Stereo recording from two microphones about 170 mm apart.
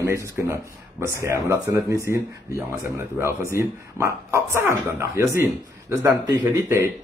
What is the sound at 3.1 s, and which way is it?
Speech, 15° right (ahead or behind).